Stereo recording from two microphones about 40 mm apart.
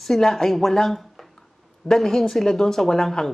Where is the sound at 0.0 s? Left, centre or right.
Centre.